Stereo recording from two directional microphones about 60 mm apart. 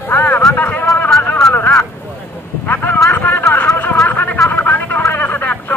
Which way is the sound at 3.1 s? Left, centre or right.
Left.